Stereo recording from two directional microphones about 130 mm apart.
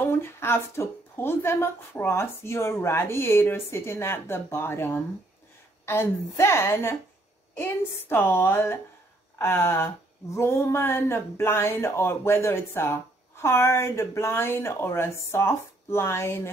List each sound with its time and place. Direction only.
0.0 s a woman's voice: 20° left (ahead or behind)